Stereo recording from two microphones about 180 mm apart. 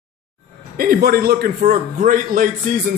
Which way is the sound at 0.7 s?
55° right (ahead or behind).